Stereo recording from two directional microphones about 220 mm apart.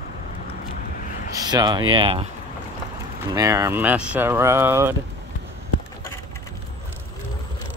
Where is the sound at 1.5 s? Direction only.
20° right (ahead or behind).